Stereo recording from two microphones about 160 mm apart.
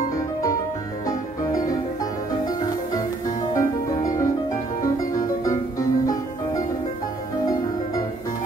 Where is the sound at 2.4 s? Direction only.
25° left (ahead or behind).